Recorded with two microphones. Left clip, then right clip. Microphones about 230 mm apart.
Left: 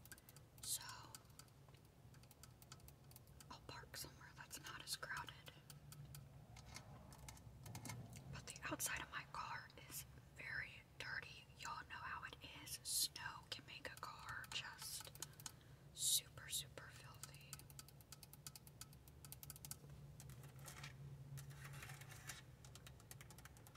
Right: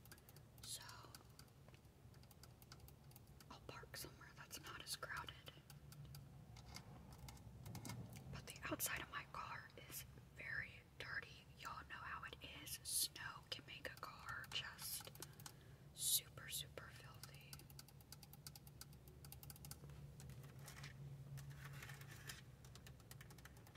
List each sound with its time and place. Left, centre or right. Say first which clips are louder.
0.6 s whispering: left 4 dB; centre
3.4 s whispering: left 1 dB; centre
7.6 s whispering: left 1 dB; centre
19.4 s typing: left 3 dB; centre